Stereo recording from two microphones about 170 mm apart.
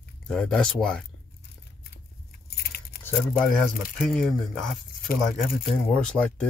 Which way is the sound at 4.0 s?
Centre (ahead or behind).